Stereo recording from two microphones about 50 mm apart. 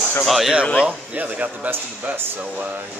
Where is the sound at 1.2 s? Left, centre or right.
Right.